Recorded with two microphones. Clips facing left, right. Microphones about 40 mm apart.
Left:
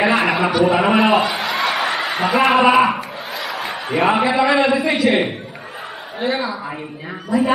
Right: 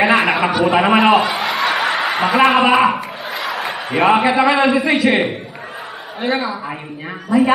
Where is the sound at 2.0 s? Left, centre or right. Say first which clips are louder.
Right 2 dB; right.